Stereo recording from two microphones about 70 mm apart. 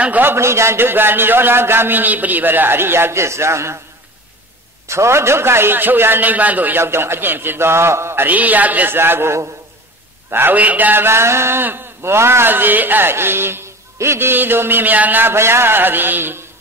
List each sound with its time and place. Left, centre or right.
0.0 s a man's voice: right
4.8 s a man's voice: right
6.8 s a man's voice: right
8.3 s a man's voice: right
10.3 s a man's voice: right